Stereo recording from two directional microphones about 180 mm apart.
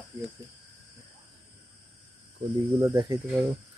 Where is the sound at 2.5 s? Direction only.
20° right (ahead or behind).